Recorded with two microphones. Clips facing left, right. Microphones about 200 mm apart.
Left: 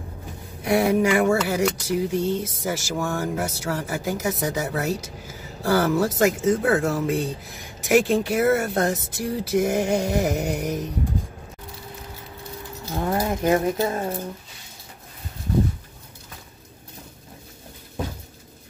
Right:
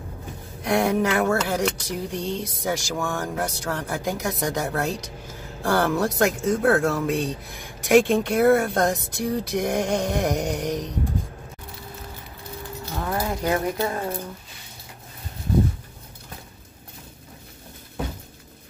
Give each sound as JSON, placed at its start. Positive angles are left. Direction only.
{"t": 0.7, "sound": "speech", "side_deg": 5}
{"t": 12.9, "sound": "horse", "side_deg": 25}